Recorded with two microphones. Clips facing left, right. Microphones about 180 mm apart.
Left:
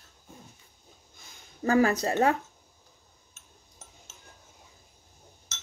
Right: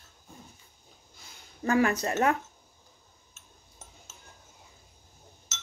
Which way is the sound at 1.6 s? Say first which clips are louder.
Left 2 dB; 35° left (ahead or behind).